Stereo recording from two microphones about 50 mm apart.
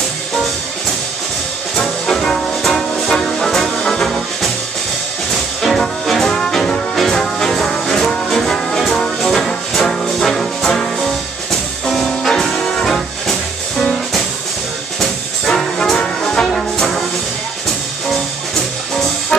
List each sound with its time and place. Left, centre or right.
1.8 s music: centre
6.2 s music: centre
11.8 s music: centre
15.0 s music: centre
16.0 s brass instrument: centre
16.4 s brass instrument: centre